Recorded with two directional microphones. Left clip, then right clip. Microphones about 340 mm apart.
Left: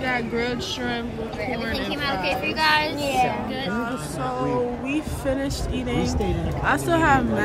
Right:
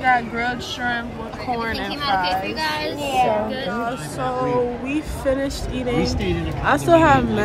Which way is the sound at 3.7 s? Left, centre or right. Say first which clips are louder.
Right 3 dB; centre.